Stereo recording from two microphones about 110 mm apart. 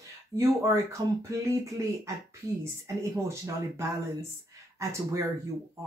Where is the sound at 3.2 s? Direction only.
25° right (ahead or behind).